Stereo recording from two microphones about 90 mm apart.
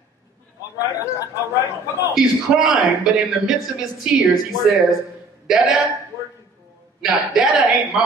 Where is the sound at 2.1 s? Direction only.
5° right (ahead or behind).